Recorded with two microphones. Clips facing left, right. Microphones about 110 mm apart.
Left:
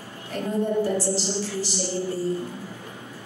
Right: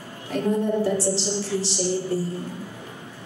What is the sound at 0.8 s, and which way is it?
Speech, 30° right (ahead or behind).